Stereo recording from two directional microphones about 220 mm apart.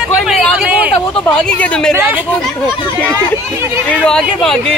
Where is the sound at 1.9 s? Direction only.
10° right (ahead or behind).